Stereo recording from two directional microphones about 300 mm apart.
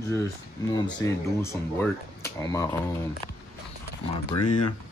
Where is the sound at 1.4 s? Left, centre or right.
Centre.